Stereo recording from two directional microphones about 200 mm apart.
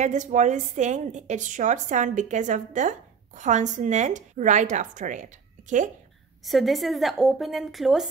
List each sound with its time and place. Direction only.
0.0 s a woman's voice: 40° right (ahead or behind)
6.4 s a woman's voice: centre (ahead or behind)